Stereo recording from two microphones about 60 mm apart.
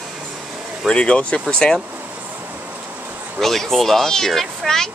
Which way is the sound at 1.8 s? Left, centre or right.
Right.